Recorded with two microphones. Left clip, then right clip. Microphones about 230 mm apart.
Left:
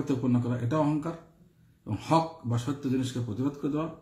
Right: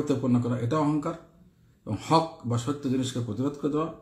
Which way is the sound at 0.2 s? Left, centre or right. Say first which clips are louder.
Right 3 dB; centre.